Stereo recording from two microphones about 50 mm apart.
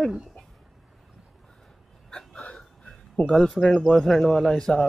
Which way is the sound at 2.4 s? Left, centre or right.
Left.